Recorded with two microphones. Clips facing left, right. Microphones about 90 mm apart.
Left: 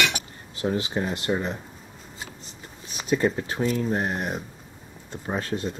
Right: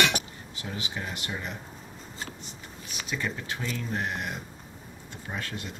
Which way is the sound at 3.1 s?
40° left (ahead or behind).